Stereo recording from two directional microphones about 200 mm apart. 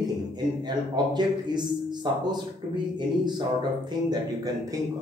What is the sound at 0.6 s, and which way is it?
A man's voice, 20° right (ahead or behind).